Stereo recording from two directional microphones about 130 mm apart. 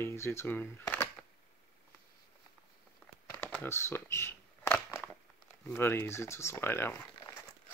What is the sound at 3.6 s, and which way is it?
Speech, 20° left (ahead or behind).